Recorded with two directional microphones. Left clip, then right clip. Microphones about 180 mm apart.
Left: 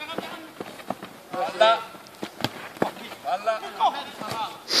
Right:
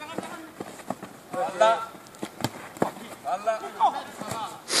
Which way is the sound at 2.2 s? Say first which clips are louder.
Left 2 dB; 5° right (ahead or behind).